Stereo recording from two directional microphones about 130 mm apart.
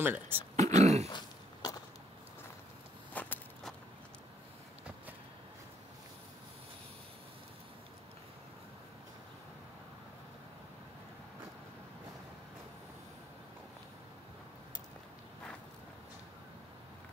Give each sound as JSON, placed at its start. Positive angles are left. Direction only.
{"t": 0.0, "sound": "speech", "side_deg": -15}
{"t": 0.6, "sound": "throat clearing", "side_deg": -60}
{"t": 1.0, "sound": "throat clearing", "side_deg": 30}
{"t": 3.1, "sound": "walk", "side_deg": 10}